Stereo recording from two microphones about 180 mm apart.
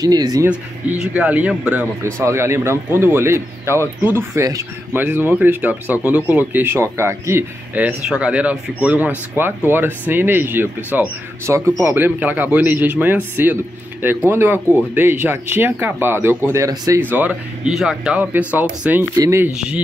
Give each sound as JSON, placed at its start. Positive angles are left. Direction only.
{"t": 0.0, "sound": "speech", "side_deg": -20}
{"t": 0.5, "sound": "speech", "side_deg": -5}
{"t": 19.5, "sound": "speech", "side_deg": -5}